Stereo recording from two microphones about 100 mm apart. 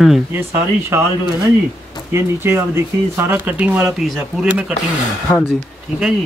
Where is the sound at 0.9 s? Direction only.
30° right (ahead or behind).